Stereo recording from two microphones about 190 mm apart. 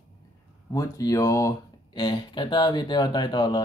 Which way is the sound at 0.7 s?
15° left (ahead or behind).